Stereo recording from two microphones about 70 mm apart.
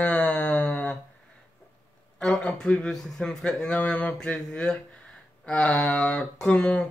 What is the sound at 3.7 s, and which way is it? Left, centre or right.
Mantra, centre.